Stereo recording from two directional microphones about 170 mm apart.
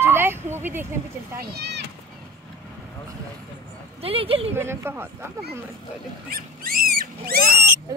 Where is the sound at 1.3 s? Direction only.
70° right (ahead or behind).